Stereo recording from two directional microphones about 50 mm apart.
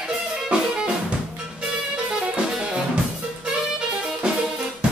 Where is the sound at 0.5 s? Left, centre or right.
Centre.